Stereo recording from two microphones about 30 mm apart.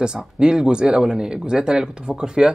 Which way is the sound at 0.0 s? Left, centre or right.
Right.